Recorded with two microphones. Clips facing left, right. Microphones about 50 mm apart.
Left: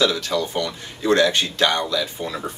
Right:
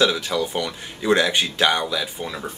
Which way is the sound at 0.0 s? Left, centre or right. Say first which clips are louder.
Even; centre.